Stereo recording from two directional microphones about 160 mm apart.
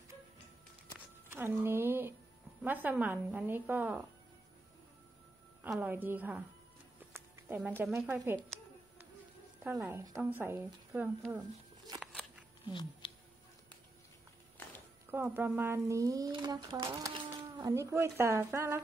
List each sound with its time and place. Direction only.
1.3 s a sound: 15° right (ahead or behind)
2.6 s speech: 10° right (ahead or behind)
5.7 s speech: 10° right (ahead or behind)
7.0 s a sound: 10° right (ahead or behind)
9.6 s speech: 10° right (ahead or behind)
12.0 s scissors: centre (ahead or behind)
12.6 s speech: 30° left (ahead or behind)
15.0 s speech: 15° right (ahead or behind)